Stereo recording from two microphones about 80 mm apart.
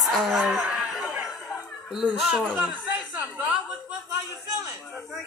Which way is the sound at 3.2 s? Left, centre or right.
Centre.